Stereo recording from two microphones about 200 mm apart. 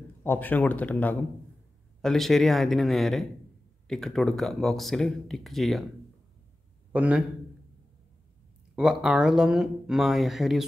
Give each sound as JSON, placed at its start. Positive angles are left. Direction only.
{"t": 0.2, "sound": "speech", "side_deg": 10}
{"t": 6.9, "sound": "a man's voice", "side_deg": -5}
{"t": 8.7, "sound": "speech", "side_deg": -5}